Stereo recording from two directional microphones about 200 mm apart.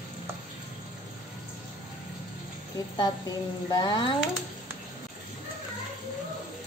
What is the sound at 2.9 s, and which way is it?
A woman's voice, 20° left (ahead or behind).